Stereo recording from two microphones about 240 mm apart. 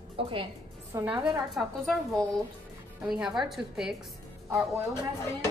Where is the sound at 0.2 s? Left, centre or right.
Right.